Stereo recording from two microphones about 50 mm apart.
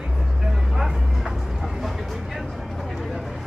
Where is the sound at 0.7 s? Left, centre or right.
Centre.